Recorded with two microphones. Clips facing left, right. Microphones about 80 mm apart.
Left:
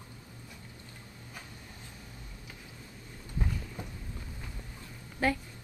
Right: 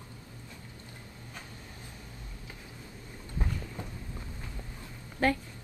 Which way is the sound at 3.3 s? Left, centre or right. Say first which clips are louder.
Even; right.